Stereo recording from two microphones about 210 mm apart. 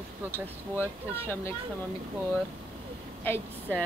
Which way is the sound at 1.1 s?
10° left (ahead or behind).